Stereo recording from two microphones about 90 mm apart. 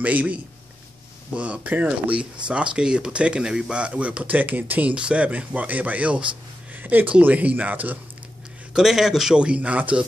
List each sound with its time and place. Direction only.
0.0 s speech: 15° right (ahead or behind)
8.7 s speech: 5° right (ahead or behind)